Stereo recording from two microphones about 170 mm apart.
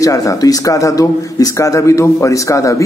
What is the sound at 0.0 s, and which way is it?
A man's voice, 20° left (ahead or behind).